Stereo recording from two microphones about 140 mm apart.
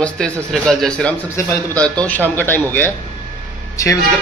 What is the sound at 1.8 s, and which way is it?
Speech, 10° left (ahead or behind).